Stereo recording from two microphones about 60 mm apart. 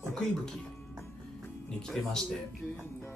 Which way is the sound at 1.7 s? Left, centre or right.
Centre.